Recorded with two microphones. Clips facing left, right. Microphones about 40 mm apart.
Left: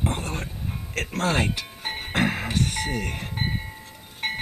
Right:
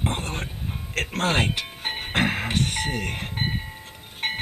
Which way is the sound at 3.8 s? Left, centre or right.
Right.